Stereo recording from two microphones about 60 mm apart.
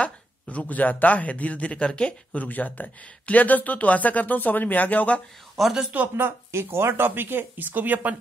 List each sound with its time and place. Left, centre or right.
0.0 s speech: left
2.3 s speech: left
5.6 s a man's voice: centre
6.1 s speech: right